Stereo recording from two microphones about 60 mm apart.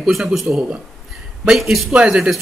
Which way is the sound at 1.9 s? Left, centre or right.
Centre.